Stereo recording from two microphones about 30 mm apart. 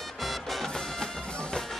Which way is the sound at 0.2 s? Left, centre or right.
Centre.